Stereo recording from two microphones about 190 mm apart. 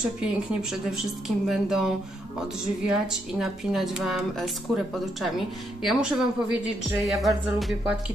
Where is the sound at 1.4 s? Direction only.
Centre (ahead or behind).